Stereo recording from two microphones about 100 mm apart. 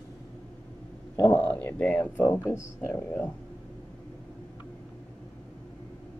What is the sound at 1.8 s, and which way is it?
Speech, 10° left (ahead or behind).